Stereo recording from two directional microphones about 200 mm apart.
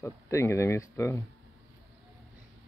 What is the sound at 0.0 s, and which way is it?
Speech, 15° left (ahead or behind).